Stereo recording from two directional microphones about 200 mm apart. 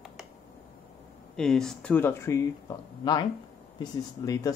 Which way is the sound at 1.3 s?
Centre (ahead or behind).